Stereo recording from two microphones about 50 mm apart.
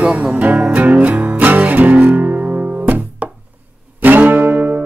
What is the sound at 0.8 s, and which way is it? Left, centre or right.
Music, right.